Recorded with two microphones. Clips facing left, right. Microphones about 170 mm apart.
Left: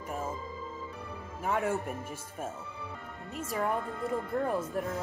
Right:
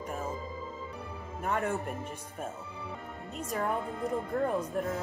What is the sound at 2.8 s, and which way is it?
Music, 20° right (ahead or behind).